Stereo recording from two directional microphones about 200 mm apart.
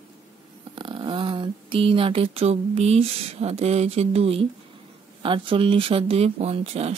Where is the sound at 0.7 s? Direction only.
25° right (ahead or behind).